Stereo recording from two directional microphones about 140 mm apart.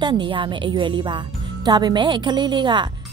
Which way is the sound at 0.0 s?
35° right (ahead or behind).